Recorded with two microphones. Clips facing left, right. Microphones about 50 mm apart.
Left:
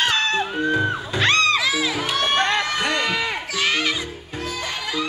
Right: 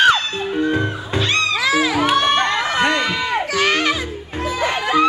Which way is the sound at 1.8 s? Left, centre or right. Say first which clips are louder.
Right 7 dB; right.